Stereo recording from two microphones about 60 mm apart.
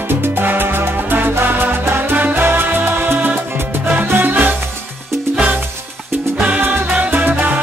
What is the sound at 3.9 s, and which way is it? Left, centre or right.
Music, right.